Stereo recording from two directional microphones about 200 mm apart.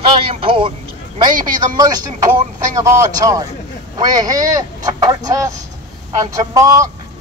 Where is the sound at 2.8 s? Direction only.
15° right (ahead or behind).